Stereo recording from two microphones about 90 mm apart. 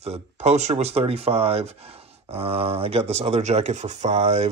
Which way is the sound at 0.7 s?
75° right (ahead or behind).